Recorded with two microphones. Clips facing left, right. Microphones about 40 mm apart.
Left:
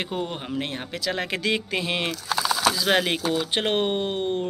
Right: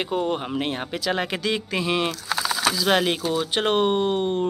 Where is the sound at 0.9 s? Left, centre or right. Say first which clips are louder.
Right 1 dB; centre.